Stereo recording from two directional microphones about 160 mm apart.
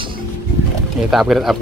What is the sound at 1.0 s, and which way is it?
Speech, centre (ahead or behind).